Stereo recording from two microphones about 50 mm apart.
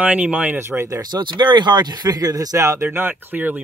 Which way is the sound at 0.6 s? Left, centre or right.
Right.